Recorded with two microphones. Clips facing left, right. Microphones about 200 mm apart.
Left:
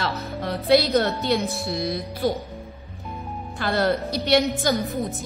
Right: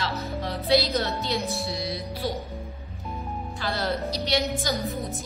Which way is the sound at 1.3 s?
Centre (ahead or behind).